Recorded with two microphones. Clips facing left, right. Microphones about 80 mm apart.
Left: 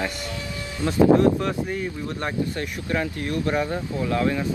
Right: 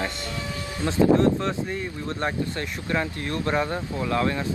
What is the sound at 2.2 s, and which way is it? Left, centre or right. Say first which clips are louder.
Speech: left 1 dB; right.